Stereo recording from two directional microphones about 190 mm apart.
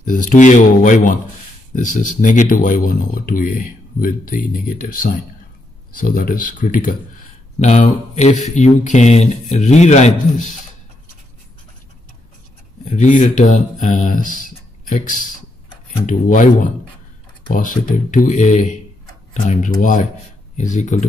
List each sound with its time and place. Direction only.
0.0 s speech: 45° left (ahead or behind)
12.8 s speech: 40° left (ahead or behind)